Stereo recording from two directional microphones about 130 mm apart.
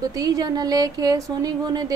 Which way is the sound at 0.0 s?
30° right (ahead or behind).